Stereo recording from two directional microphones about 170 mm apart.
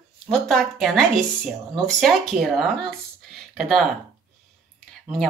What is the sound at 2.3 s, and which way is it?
Speech, 5° right (ahead or behind).